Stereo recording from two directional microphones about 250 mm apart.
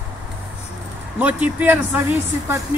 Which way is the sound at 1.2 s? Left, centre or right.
Centre.